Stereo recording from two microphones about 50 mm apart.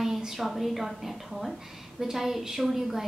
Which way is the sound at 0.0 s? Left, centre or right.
Centre.